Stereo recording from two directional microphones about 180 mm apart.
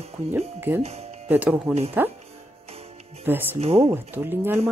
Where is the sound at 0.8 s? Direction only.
35° right (ahead or behind).